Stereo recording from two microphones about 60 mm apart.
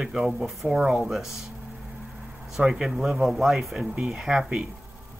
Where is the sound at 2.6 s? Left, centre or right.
Centre.